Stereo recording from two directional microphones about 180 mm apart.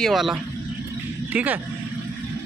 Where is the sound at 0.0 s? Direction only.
Centre (ahead or behind).